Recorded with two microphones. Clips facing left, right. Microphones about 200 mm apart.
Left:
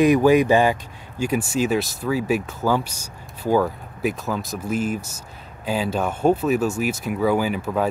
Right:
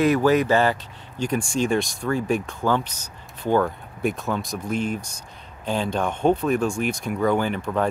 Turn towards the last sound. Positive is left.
turn(degrees=5)  # may be behind; listen again after turning